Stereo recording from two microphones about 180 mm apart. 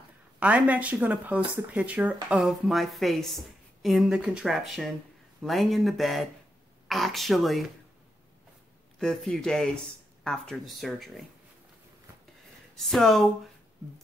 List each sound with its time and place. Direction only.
0.4 s speech: 10° right (ahead or behind)
8.9 s speech: centre (ahead or behind)
12.7 s speech: centre (ahead or behind)